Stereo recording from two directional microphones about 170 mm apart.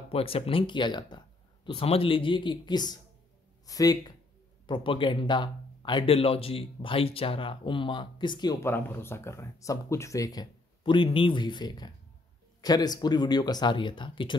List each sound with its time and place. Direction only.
0.1 s speech: 35° left (ahead or behind)